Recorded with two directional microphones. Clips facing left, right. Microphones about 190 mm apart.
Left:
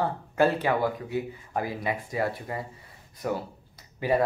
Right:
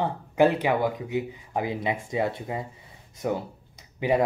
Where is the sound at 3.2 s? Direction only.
20° right (ahead or behind).